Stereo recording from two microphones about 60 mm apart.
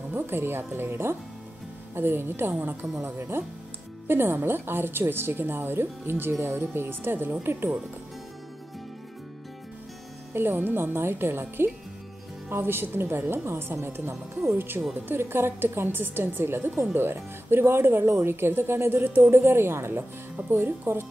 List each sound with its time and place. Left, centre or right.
0.1 s speech: right
10.3 s speech: right